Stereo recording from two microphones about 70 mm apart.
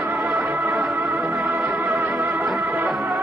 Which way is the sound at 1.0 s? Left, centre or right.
Centre.